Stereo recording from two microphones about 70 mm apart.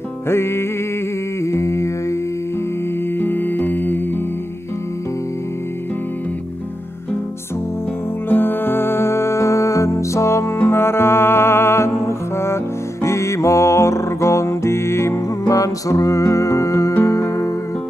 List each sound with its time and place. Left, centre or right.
0.3 s music: left
1.4 s humming: left
3.2 s music: left
8.3 s music: left